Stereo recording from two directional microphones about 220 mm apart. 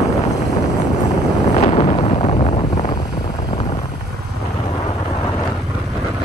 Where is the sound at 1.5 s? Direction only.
30° left (ahead or behind).